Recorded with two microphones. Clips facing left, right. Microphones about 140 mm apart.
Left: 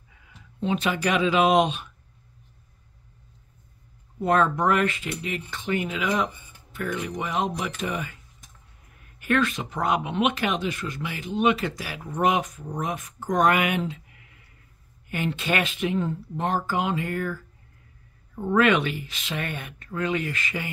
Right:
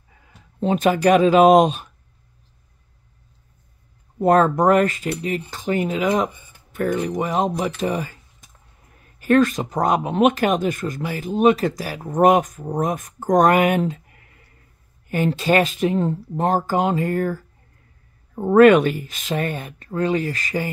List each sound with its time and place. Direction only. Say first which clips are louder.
0.6 s speech: right 7 dB; 45° right (ahead or behind)
4.2 s cutlery: right 6 dB; 40° right (ahead or behind)
9.2 s speech: right 8 dB; 40° right (ahead or behind)
15.0 s cutlery: right 8 dB; 40° right (ahead or behind)